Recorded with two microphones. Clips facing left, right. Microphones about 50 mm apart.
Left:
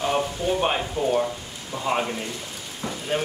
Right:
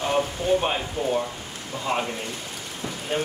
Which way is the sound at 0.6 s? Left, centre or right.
Centre.